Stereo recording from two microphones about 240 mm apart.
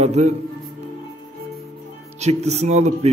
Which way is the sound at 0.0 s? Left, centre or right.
Right.